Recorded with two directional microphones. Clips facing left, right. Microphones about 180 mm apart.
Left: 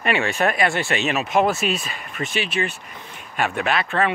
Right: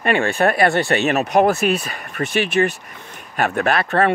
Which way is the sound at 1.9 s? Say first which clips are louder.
Right 4 dB; 50° right (ahead or behind).